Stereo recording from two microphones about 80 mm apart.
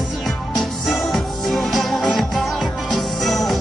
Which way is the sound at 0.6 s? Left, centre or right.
Centre.